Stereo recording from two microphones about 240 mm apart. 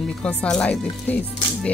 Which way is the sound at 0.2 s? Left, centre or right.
Centre.